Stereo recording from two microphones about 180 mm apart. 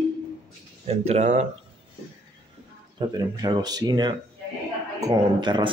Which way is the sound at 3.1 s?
20° right (ahead or behind).